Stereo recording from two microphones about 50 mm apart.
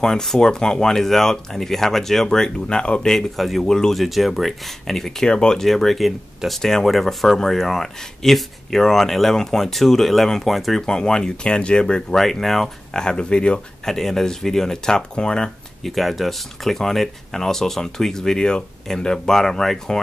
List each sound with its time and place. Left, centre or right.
0.0 s speech: centre
3.3 s speech: centre
4.0 s speech: centre
5.3 s speech: centre
5.6 s speech: centre
10.9 s speech: centre
13.0 s speech: centre
13.8 s speech: centre
15.9 s speech: centre